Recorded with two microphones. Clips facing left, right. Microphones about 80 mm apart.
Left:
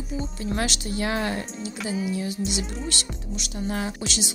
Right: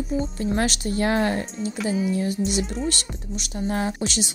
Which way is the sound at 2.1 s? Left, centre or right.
Right.